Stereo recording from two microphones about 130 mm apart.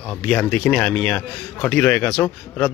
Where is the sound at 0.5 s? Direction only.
5° left (ahead or behind).